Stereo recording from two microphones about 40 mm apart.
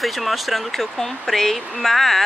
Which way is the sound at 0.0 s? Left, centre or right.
Centre.